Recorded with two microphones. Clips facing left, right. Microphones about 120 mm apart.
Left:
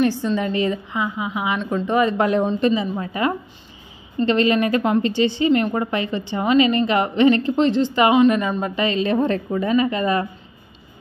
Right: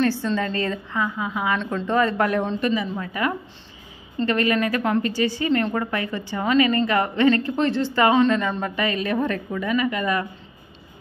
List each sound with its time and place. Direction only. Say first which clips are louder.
0.0 s a woman's voice: left 2 dB; 15° left (ahead or behind)